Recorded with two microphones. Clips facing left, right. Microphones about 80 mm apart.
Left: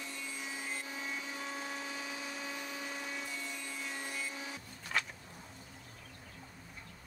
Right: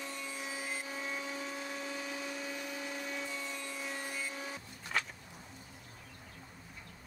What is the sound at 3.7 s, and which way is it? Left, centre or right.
Vehicle, centre.